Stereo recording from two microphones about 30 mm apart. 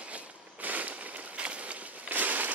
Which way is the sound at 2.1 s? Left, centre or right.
Right.